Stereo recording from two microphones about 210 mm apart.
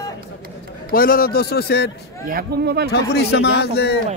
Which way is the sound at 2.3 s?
50° right (ahead or behind).